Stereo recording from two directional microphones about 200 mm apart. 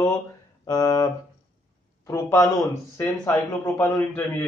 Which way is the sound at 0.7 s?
20° left (ahead or behind).